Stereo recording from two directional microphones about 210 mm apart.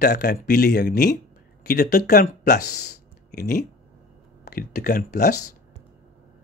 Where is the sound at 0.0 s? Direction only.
50° left (ahead or behind).